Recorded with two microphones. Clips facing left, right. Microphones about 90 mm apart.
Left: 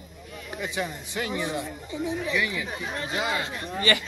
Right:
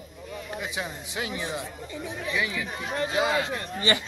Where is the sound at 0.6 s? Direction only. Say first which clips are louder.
Left 7 dB; 10° right (ahead or behind).